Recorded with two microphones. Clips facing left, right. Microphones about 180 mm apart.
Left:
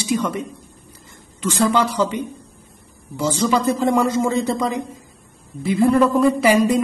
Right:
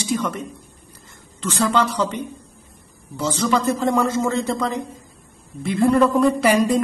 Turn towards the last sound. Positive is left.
turn(degrees=0)  # may be behind; listen again after turning